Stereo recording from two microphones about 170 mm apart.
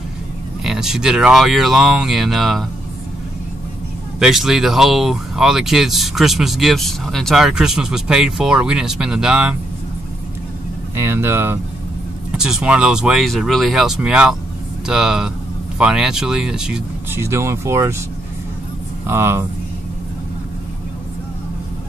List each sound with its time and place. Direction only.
0.7 s speech: 5° right (ahead or behind)
4.2 s speech: centre (ahead or behind)
11.0 s speech: 15° right (ahead or behind)
12.3 s speech: 5° right (ahead or behind)
17.2 s speech: 15° right (ahead or behind)
19.0 s speech: 15° right (ahead or behind)